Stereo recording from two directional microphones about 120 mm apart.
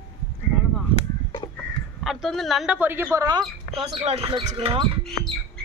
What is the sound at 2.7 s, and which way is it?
Speech, 15° right (ahead or behind).